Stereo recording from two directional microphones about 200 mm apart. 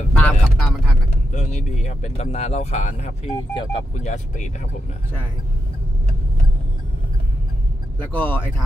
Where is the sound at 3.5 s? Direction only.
20° left (ahead or behind).